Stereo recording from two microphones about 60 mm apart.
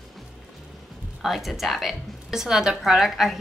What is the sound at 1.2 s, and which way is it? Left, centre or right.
A woman's voice, centre.